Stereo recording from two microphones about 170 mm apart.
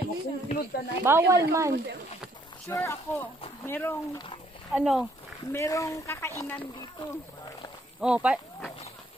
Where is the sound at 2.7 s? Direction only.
15° left (ahead or behind).